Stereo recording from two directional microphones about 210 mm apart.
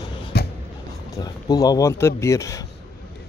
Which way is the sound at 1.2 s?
20° left (ahead or behind).